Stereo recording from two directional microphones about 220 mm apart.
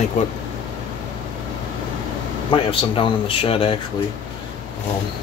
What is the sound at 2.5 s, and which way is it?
Speech, 25° left (ahead or behind).